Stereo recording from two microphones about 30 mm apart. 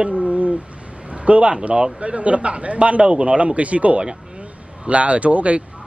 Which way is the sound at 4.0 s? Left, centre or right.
Right.